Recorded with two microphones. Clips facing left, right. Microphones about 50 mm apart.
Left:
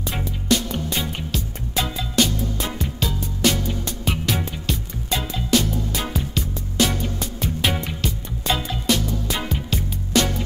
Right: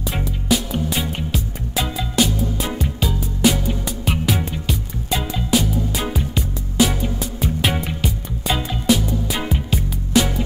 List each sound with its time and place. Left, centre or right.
0.1 s music: centre